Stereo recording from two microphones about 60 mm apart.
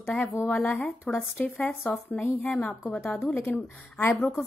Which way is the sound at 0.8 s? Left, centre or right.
Left.